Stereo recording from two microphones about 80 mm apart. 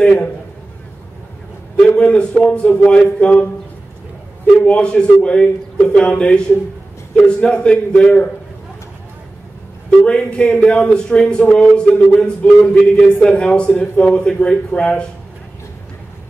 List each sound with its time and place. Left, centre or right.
0.0 s a man's voice: centre
1.8 s a man's voice: centre
4.6 s a man's voice: centre
9.8 s a man's voice: centre